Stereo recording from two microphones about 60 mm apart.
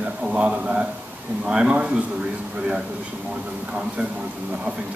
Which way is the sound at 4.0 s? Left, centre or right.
Right.